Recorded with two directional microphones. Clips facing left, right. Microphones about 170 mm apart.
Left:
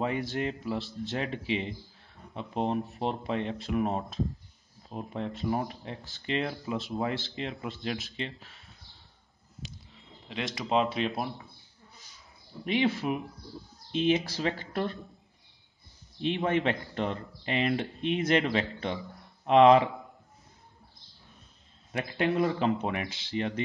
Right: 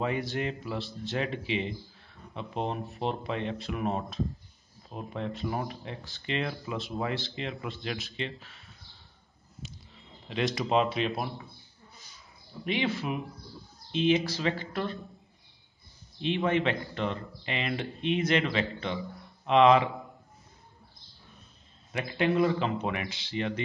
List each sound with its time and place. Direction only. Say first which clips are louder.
0.0 s speech: even; 40° left (ahead or behind)
10.3 s speech: right 2 dB; 25° left (ahead or behind)
12.6 s speech: left 3 dB; 40° left (ahead or behind)
16.2 s speech: even; 45° left (ahead or behind)
21.9 s speech: right 1 dB; 45° left (ahead or behind)